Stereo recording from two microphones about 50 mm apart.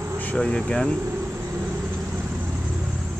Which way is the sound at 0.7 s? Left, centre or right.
Centre.